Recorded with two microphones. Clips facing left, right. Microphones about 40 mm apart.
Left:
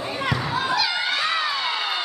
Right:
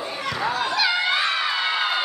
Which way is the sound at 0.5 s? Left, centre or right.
Centre.